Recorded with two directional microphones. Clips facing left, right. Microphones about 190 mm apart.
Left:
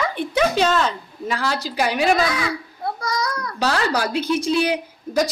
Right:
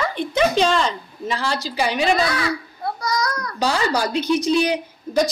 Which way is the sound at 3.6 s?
10° right (ahead or behind).